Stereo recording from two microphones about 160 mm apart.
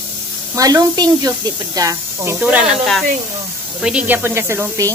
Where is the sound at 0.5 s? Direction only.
20° right (ahead or behind).